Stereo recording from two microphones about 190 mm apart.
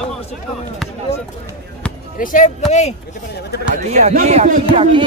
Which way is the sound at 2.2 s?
45° left (ahead or behind).